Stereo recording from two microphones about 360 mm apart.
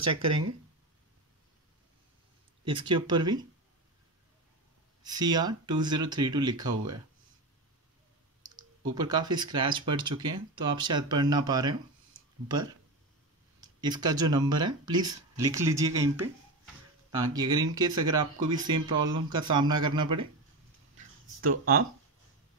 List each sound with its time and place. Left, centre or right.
0.0 s speech: centre
2.6 s speech: centre
5.0 s speech: centre
8.8 s speech: centre
21.4 s speech: right